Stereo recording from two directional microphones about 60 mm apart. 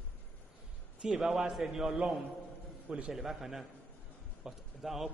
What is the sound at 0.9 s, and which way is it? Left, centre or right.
A man's voice, centre.